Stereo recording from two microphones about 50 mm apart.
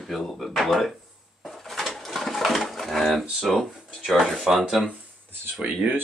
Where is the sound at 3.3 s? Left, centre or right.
Centre.